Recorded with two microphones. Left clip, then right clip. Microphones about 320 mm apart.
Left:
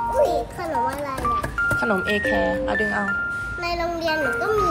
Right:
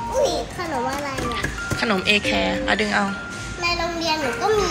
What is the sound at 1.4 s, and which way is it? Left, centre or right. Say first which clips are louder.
Speech: left 3 dB; centre.